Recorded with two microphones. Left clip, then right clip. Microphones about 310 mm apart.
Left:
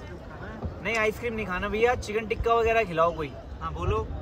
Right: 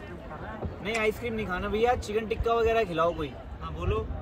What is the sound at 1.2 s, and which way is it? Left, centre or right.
Speech, centre.